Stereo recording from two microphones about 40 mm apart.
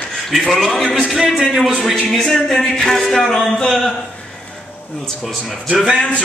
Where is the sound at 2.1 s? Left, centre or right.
Centre.